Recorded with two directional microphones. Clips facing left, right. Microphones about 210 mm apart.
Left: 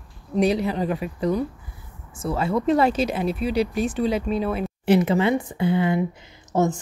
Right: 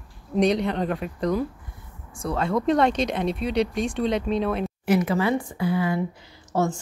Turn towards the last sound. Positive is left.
turn(degrees=20)  # may be behind; listen again after turning